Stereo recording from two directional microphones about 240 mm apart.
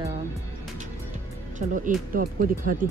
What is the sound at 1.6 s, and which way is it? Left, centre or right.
Speech, right.